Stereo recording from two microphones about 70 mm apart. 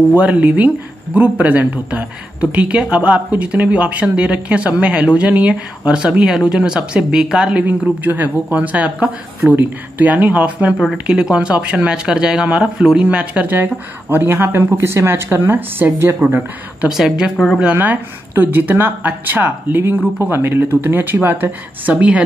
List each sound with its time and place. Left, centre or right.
0.1 s speech: right
16.9 s speech: centre
17.7 s speech: right